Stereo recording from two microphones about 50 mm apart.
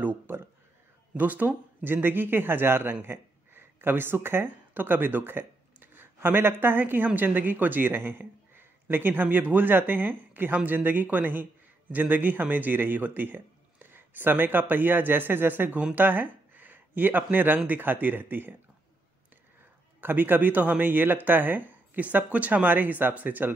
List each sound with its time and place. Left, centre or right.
0.0 s a sound: right
1.1 s a man's voice: right
20.0 s a man's voice: right